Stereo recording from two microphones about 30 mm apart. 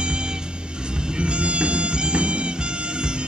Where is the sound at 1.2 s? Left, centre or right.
Right.